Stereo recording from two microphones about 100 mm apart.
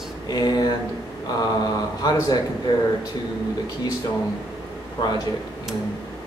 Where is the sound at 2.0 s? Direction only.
40° left (ahead or behind).